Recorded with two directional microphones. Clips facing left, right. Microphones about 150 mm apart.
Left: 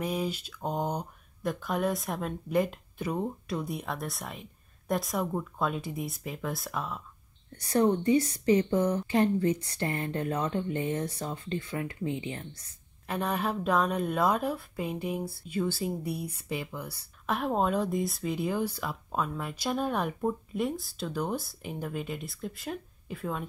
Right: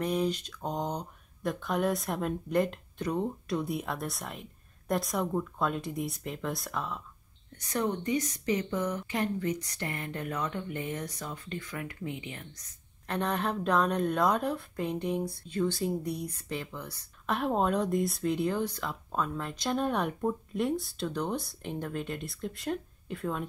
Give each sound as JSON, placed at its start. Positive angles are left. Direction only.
{"t": 0.0, "sound": "speech", "side_deg": 5}
{"t": 7.5, "sound": "speech", "side_deg": 30}
{"t": 13.0, "sound": "speech", "side_deg": 5}